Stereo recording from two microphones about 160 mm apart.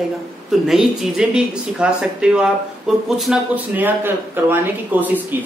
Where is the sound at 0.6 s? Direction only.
Centre (ahead or behind).